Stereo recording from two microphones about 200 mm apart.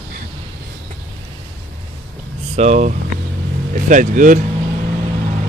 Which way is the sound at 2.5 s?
35° right (ahead or behind).